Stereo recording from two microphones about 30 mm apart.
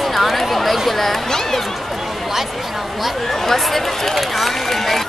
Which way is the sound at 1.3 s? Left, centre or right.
Centre.